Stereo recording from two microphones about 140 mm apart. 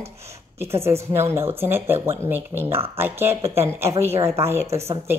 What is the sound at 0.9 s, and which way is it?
Speech, 15° right (ahead or behind).